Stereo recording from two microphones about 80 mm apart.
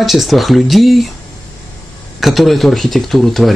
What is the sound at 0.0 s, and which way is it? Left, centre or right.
Speech, centre.